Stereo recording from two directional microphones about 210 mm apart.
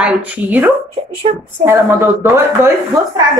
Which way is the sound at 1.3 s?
30° right (ahead or behind).